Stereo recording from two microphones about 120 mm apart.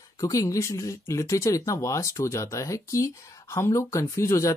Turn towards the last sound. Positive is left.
turn(degrees=25)  # may be behind; listen again after turning